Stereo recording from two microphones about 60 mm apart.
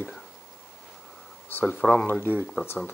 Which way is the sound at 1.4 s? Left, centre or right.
Left.